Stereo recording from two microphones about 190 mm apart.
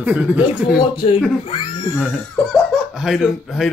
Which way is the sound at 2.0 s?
5° left (ahead or behind).